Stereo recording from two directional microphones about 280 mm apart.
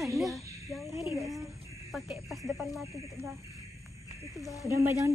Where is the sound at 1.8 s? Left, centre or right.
Centre.